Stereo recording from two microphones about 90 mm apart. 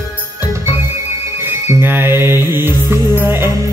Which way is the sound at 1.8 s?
25° right (ahead or behind).